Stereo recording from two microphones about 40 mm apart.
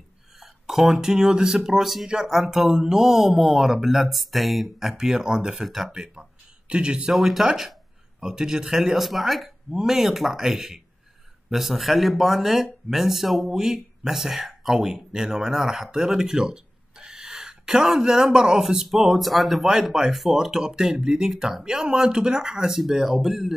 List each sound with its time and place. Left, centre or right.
0.4 s a sound: centre
0.9 s speech: centre
1.7 s speech: centre
4.9 s speech: centre
7.1 s speech: centre
18.9 s speech: centre
20.5 s speech: centre